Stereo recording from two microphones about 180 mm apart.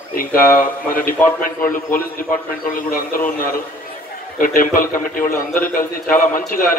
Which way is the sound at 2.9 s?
50° left (ahead or behind).